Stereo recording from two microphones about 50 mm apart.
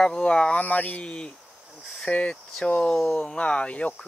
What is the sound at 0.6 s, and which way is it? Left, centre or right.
Cricket, left.